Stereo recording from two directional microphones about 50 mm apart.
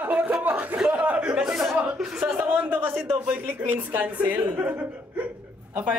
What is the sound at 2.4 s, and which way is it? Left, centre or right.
A woman's voice, right.